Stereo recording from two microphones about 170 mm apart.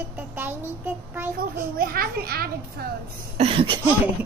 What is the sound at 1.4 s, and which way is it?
A child's voice, 60° right (ahead or behind).